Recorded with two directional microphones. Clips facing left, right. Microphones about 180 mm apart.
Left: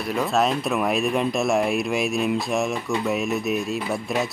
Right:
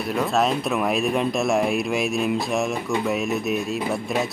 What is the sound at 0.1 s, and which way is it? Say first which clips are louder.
Speech: even; centre (ahead or behind).